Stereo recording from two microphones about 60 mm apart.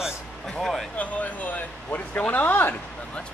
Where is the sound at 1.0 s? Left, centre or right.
Left.